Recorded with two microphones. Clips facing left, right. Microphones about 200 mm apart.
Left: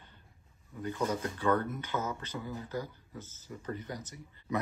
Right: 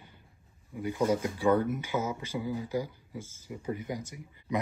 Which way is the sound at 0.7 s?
10° right (ahead or behind).